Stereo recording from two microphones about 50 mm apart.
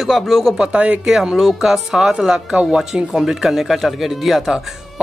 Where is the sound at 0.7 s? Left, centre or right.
Right.